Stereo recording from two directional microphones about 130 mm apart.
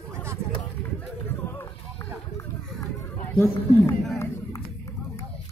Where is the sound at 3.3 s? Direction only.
15° left (ahead or behind).